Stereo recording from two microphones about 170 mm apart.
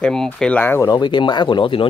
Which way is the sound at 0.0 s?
5° left (ahead or behind).